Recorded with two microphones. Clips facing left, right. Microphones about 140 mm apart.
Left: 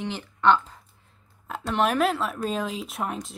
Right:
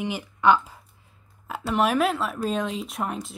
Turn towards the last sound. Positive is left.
turn(degrees=0)  # may be behind; listen again after turning